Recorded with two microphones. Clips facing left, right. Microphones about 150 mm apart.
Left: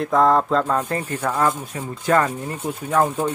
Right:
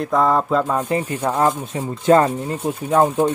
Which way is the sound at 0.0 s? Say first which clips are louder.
Left 1 dB; centre (ahead or behind).